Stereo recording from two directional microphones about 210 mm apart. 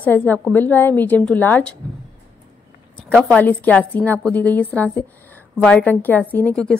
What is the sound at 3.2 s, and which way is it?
A woman's voice, 5° left (ahead or behind).